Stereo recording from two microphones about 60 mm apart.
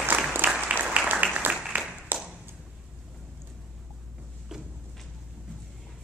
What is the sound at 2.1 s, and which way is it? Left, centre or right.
Tap, right.